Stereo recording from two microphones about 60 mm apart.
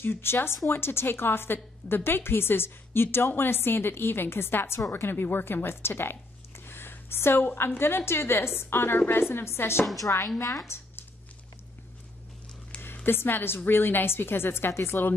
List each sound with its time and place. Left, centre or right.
0.0 s a woman's voice: left
12.8 s a woman's voice: left